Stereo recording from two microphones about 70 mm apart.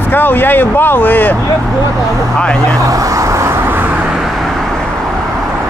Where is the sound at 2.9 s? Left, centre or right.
Right.